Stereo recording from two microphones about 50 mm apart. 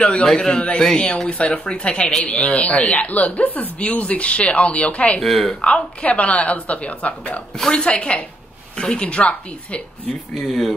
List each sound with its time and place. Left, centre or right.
0.0 s a woman's voice: left
5.2 s speech: centre
5.6 s a woman's voice: left
10.3 s a man's voice: centre